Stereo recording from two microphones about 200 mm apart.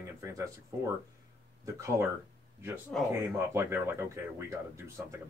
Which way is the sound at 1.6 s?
15° right (ahead or behind).